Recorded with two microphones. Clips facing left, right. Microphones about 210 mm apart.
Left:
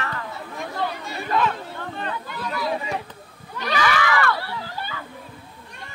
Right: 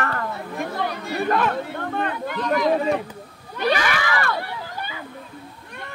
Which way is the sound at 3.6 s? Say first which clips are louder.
Right 4 dB; 55° right (ahead or behind).